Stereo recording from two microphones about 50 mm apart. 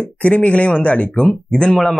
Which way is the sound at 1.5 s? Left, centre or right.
Centre.